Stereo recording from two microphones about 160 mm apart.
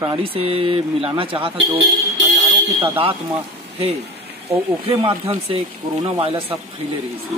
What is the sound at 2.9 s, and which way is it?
Speech, 35° right (ahead or behind).